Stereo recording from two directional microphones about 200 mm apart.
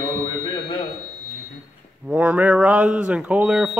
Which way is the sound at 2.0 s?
5° right (ahead or behind).